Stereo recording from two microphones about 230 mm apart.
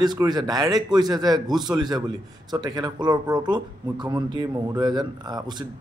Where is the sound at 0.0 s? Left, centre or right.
Centre.